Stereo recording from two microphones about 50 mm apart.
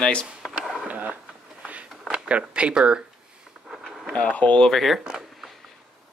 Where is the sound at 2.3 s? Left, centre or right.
Right.